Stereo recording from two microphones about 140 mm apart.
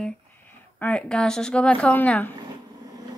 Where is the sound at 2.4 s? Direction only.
25° right (ahead or behind).